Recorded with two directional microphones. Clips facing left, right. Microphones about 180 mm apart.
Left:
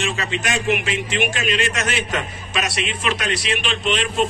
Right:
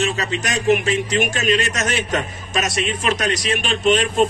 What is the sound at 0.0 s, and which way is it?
A man's voice, 40° right (ahead or behind).